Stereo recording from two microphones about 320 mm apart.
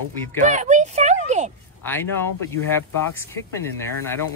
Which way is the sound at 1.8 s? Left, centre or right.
Centre.